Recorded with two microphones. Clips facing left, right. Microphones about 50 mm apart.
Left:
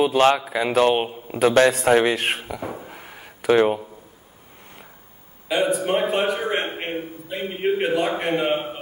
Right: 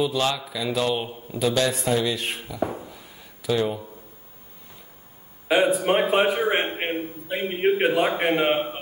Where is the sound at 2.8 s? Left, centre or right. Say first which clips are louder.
Left 3 dB; left.